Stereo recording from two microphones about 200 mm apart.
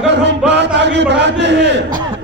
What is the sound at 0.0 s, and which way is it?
Music, 60° right (ahead or behind).